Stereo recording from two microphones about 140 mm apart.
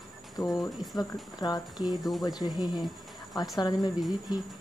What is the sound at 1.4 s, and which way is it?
Speech, 25° left (ahead or behind).